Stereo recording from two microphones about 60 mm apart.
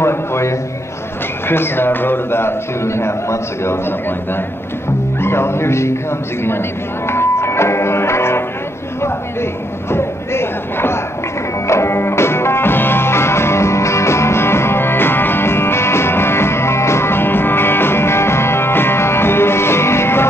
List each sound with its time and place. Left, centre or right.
0.0 s a sound: left
1.5 s a man's voice: left
5.2 s music: left
7.1 s music: left
9.0 s speech: left
11.6 s music: left